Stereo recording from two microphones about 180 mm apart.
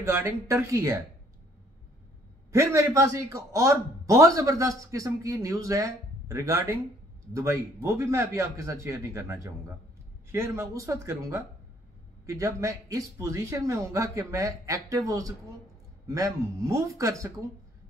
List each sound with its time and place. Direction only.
0.0 s a man's voice: 15° right (ahead or behind)
2.5 s a man's voice: 15° right (ahead or behind)